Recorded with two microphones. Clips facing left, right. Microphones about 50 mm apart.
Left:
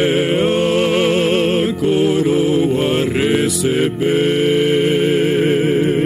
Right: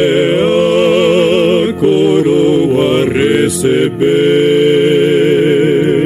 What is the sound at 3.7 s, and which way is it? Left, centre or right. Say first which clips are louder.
Mantra: right 6 dB; centre.